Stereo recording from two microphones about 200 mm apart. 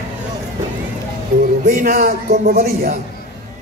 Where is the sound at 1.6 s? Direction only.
50° right (ahead or behind).